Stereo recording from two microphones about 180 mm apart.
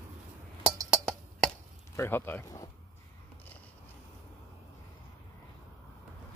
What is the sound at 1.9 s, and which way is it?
Speech, 15° left (ahead or behind).